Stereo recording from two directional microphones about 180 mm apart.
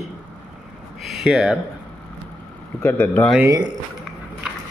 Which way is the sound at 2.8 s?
15° left (ahead or behind).